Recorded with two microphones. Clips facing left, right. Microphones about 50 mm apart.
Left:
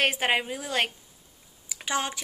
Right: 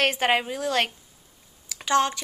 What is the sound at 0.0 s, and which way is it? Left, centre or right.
Speech, centre.